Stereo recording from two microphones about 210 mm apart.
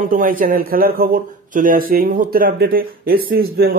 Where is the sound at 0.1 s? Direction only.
40° right (ahead or behind).